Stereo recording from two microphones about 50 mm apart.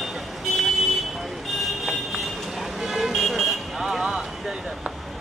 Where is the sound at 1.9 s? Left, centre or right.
Centre.